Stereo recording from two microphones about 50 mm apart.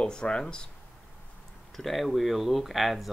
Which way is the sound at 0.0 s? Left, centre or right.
Centre.